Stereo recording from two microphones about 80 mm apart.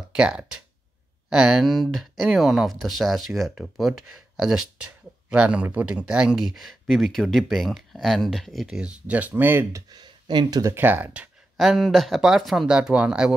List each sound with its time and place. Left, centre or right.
0.1 s speech: centre
8.6 s speech: centre
9.8 s speech: right
10.7 s speech: right
11.5 s speech: centre